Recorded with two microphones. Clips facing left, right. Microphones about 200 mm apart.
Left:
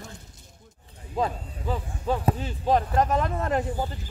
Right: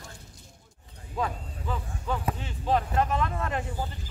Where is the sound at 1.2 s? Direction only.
30° left (ahead or behind).